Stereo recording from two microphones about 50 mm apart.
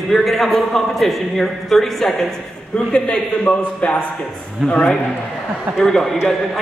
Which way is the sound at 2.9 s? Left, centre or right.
Centre.